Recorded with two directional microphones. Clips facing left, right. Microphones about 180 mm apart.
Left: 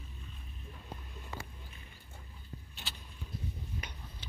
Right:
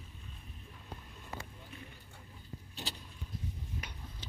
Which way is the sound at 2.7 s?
35° right (ahead or behind).